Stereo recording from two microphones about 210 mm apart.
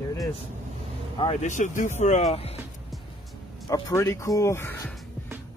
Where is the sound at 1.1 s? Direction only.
30° left (ahead or behind).